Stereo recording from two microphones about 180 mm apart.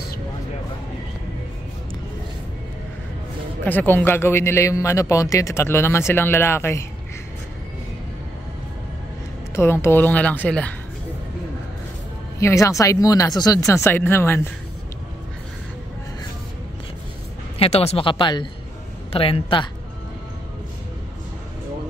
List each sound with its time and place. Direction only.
3.6 s a man's voice: 10° left (ahead or behind)
9.6 s a man's voice: 15° left (ahead or behind)
12.4 s a man's voice: 15° left (ahead or behind)
17.6 s speech: 35° left (ahead or behind)